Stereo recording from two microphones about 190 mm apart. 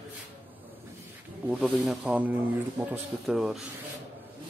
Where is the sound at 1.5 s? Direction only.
5° right (ahead or behind).